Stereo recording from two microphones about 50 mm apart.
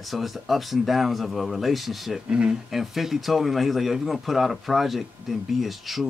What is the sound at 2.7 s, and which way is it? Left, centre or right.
Speech, centre.